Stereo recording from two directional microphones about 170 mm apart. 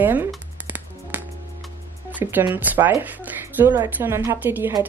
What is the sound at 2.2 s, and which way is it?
Speech, 15° right (ahead or behind).